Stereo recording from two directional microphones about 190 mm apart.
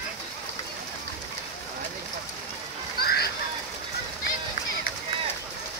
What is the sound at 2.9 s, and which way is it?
Water, 55° left (ahead or behind).